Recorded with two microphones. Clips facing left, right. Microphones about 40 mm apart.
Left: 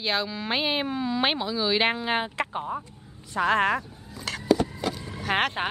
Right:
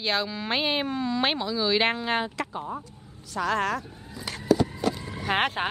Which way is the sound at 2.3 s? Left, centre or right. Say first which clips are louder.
Left 3 dB; left.